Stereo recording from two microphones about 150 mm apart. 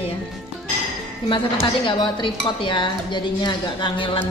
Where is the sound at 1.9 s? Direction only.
30° left (ahead or behind).